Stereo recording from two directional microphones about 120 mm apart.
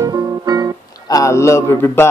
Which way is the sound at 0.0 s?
30° right (ahead or behind).